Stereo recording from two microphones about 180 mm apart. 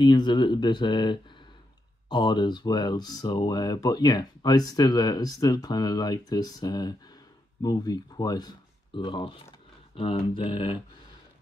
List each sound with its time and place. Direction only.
0.0 s speech: 25° left (ahead or behind)